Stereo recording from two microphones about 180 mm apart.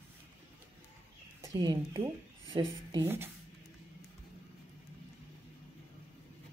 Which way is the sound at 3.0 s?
10° right (ahead or behind).